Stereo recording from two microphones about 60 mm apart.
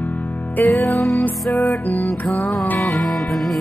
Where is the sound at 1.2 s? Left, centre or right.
Left.